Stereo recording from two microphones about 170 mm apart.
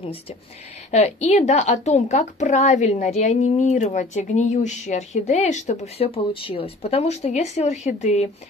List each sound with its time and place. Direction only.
0.0 s a woman's voice: 35° left (ahead or behind)